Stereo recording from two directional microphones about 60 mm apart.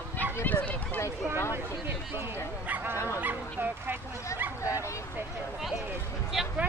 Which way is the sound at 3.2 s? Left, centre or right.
Right.